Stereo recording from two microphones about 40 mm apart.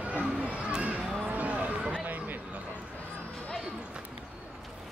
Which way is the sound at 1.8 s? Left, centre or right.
Right.